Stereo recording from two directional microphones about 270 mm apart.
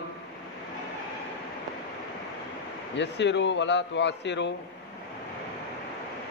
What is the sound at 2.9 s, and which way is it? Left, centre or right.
A man's voice, left.